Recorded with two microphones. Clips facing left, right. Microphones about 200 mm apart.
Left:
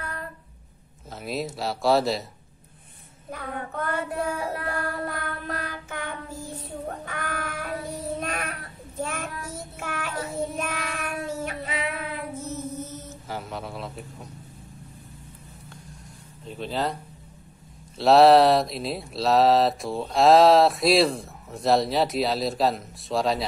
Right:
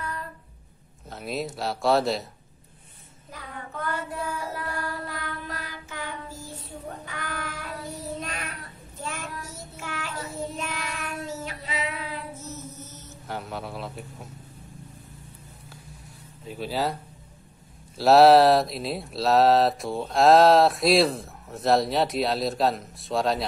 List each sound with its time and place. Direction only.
1.1 s speech: centre (ahead or behind)
3.3 s child singing: 55° left (ahead or behind)
13.3 s a man's voice: centre (ahead or behind)
16.4 s speech: 5° right (ahead or behind)
17.9 s speech: centre (ahead or behind)